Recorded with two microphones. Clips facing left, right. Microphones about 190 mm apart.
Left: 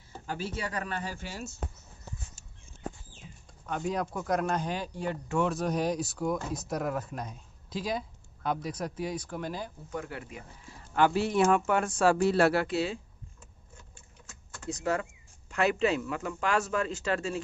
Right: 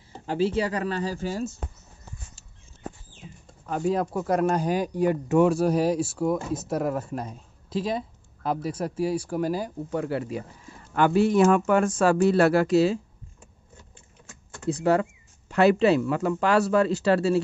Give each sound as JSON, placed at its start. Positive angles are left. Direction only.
{"t": 0.1, "sound": "speech", "side_deg": -30}
{"t": 3.6, "sound": "speech", "side_deg": 0}
{"t": 9.9, "sound": "speech", "side_deg": -35}
{"t": 11.0, "sound": "speech", "side_deg": -50}
{"t": 11.8, "sound": "speech", "side_deg": -90}
{"t": 12.3, "sound": "speech", "side_deg": -50}
{"t": 14.9, "sound": "speech", "side_deg": -35}